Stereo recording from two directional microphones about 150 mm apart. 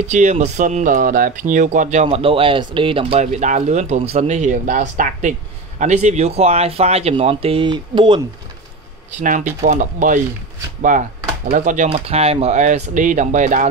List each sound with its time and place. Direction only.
0.0 s speech: 50° right (ahead or behind)
3.2 s speech: 55° right (ahead or behind); by 8.2 s 35° right (ahead or behind)
9.2 s speech: 60° right (ahead or behind)
11.9 s speech: 40° right (ahead or behind); by 13.7 s 55° right (ahead or behind)